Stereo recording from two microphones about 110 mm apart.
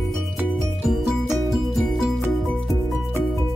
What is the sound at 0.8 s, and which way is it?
Music, centre (ahead or behind).